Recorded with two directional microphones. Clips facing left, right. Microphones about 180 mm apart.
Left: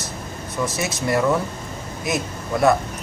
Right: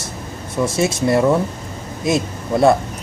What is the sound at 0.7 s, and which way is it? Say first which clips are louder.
Speech: right 6 dB; 25° right (ahead or behind).